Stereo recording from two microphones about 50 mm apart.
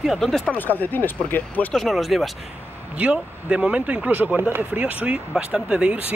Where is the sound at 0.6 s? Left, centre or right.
Left.